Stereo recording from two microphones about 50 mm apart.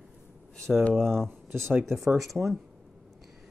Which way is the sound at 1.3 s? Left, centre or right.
Right.